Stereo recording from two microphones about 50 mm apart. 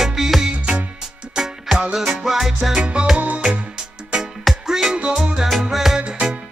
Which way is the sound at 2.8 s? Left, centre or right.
Right.